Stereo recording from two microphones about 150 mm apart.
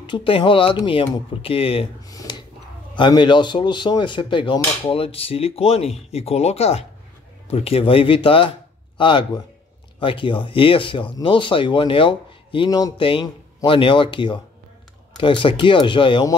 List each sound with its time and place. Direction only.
0.0 s speech: 35° left (ahead or behind)
2.0 s dishes: 25° left (ahead or behind)
2.9 s a man's voice: 30° left (ahead or behind)